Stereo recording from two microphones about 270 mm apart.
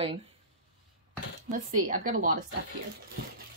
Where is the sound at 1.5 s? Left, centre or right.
Right.